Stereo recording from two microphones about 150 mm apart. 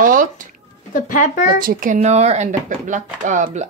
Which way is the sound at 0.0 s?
65° right (ahead or behind).